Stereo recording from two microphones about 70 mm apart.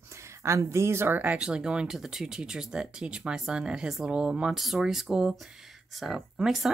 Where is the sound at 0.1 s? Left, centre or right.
Right.